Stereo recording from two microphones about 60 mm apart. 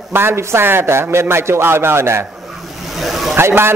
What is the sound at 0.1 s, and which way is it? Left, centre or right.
A man's voice, right.